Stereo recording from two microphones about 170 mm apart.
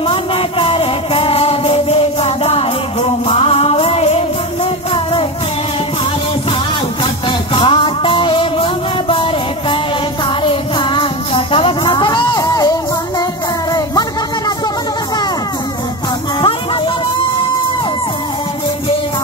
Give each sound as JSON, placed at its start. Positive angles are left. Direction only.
{"t": 0.1, "sound": "music", "side_deg": 35}
{"t": 7.2, "sound": "music", "side_deg": 30}